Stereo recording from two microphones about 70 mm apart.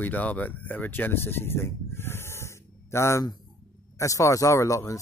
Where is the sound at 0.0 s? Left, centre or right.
Left.